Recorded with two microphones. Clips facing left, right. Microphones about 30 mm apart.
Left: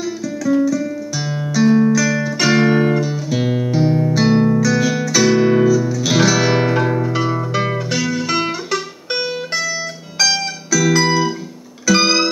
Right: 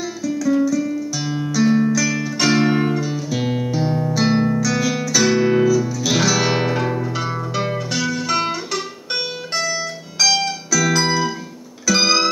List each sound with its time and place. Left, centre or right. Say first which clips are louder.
0.0 s music: even; centre
4.3 s music: left 4 dB; centre
4.6 s guitar: left 4 dB; centre
5.2 s music: left 3 dB; centre